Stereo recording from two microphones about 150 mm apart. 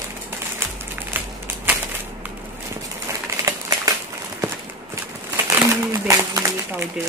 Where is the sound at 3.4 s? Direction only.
20° right (ahead or behind).